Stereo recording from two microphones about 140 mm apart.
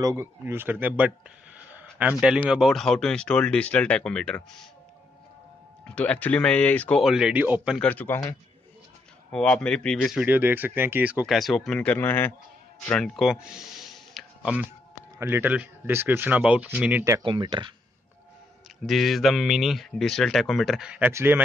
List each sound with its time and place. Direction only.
0.0 s speech: 20° right (ahead or behind); by 4.6 s 5° left (ahead or behind)
5.9 s speech: 10° left (ahead or behind)
7.0 s speech: 5° right (ahead or behind)
7.8 s speech: 10° left (ahead or behind)
10.1 s speech: 15° right (ahead or behind)
11.2 s speech: centre (ahead or behind)
12.8 s speech: 5° left (ahead or behind); by 17.2 s 15° right (ahead or behind)
17.2 s speech: 35° right (ahead or behind)
18.9 s speech: centre (ahead or behind)
21.1 s speech: 20° right (ahead or behind)